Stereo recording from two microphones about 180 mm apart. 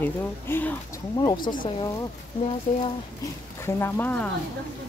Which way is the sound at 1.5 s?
40° left (ahead or behind).